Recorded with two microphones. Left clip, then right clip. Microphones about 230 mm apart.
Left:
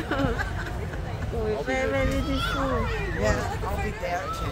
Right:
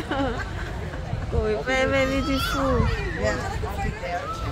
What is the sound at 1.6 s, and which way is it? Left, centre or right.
Speech, right.